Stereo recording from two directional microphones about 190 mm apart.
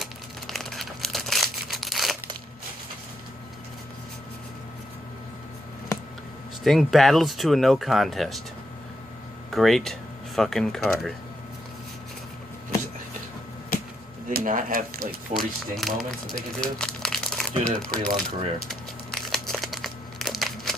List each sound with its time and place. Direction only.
0.0 s crumpling: centre (ahead or behind)
6.6 s speech: centre (ahead or behind)
9.5 s speech: centre (ahead or behind)
14.3 s speech: 45° right (ahead or behind)
15.3 s speech: centre (ahead or behind)
19.2 s crumpling: centre (ahead or behind)